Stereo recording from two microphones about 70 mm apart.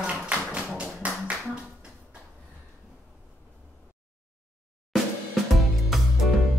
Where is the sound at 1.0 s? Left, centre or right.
Centre.